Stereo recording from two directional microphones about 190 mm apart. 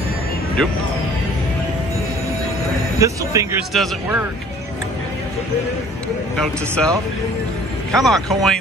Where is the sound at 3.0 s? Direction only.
15° right (ahead or behind).